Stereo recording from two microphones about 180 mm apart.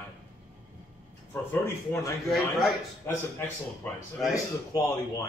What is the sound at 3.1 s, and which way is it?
A man's voice, 10° left (ahead or behind).